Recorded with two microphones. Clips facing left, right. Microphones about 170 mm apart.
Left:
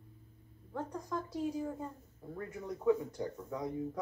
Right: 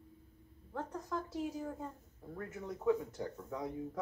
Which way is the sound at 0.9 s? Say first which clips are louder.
Even; centre (ahead or behind).